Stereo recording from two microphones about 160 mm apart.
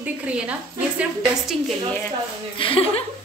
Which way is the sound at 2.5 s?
35° left (ahead or behind).